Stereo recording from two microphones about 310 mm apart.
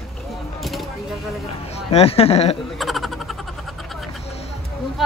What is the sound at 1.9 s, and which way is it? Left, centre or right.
Speech, centre.